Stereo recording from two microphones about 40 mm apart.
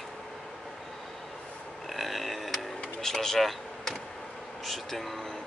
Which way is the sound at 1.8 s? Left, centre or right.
Centre.